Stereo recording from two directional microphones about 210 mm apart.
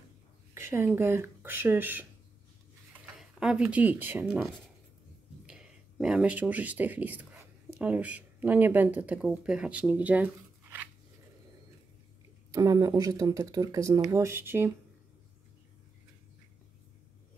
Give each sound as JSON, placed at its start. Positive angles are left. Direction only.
{"t": 0.6, "sound": "speech", "side_deg": -10}
{"t": 3.2, "sound": "speech", "side_deg": -5}
{"t": 5.5, "sound": "speech", "side_deg": -5}
{"t": 12.5, "sound": "speech", "side_deg": -15}